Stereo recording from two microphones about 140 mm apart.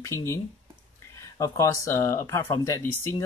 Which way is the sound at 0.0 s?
20° left (ahead or behind).